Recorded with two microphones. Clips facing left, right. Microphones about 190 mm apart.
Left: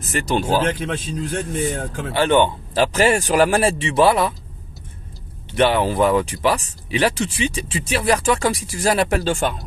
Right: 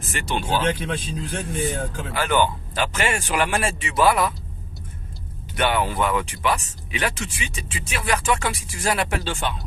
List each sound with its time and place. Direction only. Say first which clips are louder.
0.0 s speech: left 6 dB; 40° left (ahead or behind)
2.1 s speech: left 5 dB; 30° left (ahead or behind)
5.5 s speech: left 5 dB; 30° left (ahead or behind); by 9.6 s 45° left (ahead or behind)